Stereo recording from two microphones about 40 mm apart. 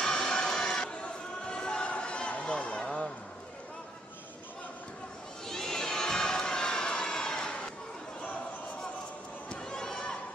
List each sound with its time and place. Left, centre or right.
0.0 s crowd: centre
5.5 s crowd: centre
9.5 s run: centre